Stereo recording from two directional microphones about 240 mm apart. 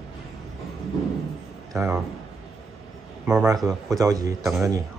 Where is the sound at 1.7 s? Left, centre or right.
Centre.